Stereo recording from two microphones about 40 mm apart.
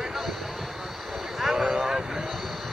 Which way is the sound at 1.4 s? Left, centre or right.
Centre.